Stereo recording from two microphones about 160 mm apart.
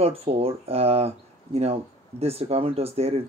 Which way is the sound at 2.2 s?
40° right (ahead or behind).